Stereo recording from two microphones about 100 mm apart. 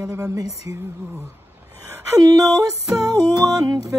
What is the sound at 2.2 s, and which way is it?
Music, 40° right (ahead or behind).